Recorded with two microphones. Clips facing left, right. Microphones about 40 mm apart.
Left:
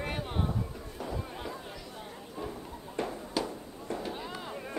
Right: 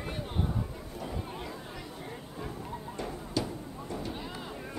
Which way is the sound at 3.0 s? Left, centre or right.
Centre.